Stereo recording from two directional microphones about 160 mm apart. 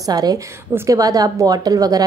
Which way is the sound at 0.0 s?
25° right (ahead or behind).